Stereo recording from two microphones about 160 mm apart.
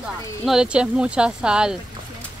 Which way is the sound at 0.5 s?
5° right (ahead or behind).